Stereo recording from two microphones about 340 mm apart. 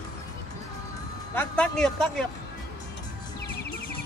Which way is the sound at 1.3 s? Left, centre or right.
Centre.